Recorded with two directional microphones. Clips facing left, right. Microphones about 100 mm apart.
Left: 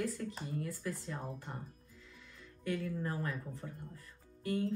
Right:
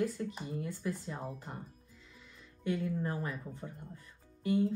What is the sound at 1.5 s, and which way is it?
Speech, 25° right (ahead or behind).